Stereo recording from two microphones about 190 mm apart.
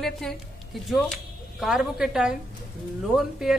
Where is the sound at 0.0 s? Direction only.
Centre (ahead or behind).